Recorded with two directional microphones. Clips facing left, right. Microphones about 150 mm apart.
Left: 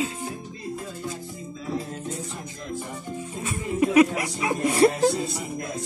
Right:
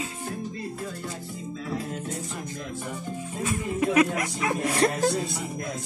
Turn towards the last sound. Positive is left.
turn(degrees=5)  # may be behind; listen again after turning